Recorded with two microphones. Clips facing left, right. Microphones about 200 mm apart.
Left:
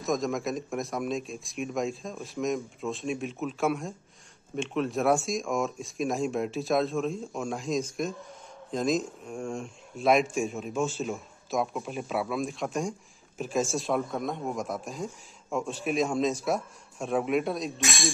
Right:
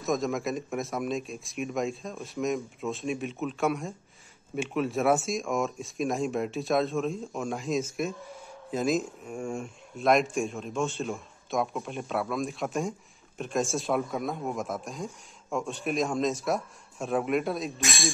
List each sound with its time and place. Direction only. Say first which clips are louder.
0.0 s speech: even; centre (ahead or behind)